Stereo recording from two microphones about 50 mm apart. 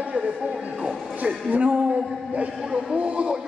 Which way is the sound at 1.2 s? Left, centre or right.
Right.